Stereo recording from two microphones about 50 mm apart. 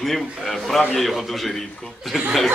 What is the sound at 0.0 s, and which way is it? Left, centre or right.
Speech, centre.